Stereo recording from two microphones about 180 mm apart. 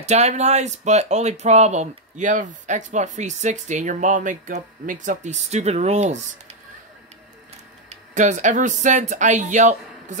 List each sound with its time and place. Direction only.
0.0 s speech: 40° right (ahead or behind)
7.9 s speech: 40° right (ahead or behind)